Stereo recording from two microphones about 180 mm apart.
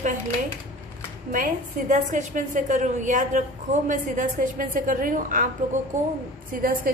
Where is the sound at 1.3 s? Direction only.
45° right (ahead or behind).